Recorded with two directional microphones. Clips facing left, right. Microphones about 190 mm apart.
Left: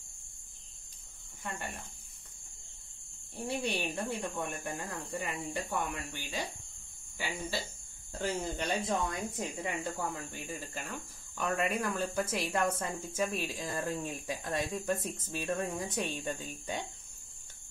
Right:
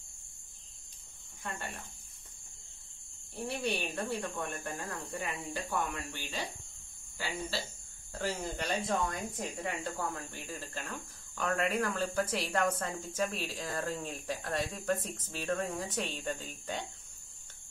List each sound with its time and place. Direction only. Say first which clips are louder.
3.4 s speech: left 1 dB; 20° left (ahead or behind)